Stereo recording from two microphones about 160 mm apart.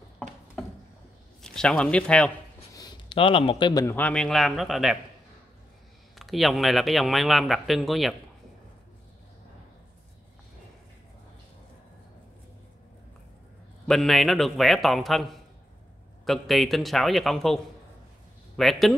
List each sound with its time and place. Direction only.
1.4 s speech: 5° left (ahead or behind)
2.7 s a sound: 25° left (ahead or behind)
3.8 s speech: 10° left (ahead or behind)
6.1 s speech: centre (ahead or behind)
13.8 s speech: centre (ahead or behind)
18.6 s speech: centre (ahead or behind)